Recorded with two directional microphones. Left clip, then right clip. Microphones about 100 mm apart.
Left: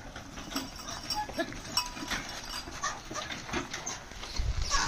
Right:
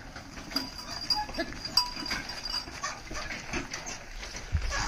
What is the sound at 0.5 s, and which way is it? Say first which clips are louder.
Clip-clop: right 3 dB; 25° right (ahead or behind).